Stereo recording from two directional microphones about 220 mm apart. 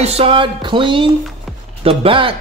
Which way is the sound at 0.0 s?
25° right (ahead or behind).